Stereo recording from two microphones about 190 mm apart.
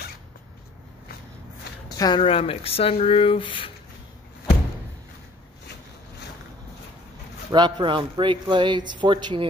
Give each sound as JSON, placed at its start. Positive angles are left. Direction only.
{"t": 1.9, "sound": "speech", "side_deg": 20}
{"t": 7.5, "sound": "speech", "side_deg": -20}